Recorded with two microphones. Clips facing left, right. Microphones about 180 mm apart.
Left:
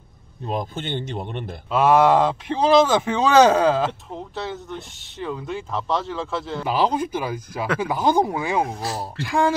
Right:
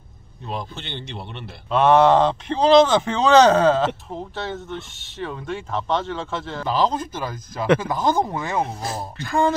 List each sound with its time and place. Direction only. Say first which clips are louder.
0.5 s a man's voice: left 5 dB; 50° left (ahead or behind)
1.7 s speech: right 1 dB; 5° left (ahead or behind)
4.1 s speech: right 1 dB; centre (ahead or behind)